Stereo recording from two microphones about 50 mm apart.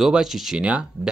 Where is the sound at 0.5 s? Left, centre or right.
Right.